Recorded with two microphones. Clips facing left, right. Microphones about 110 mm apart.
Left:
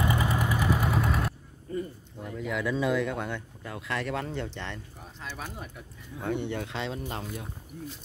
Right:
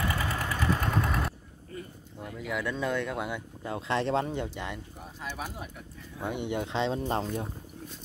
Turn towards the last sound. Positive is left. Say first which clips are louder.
# right 6 dB
turn(degrees=-35)  # may be behind; listen again after turning